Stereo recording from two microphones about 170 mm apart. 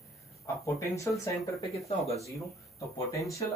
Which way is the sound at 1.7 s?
35° left (ahead or behind).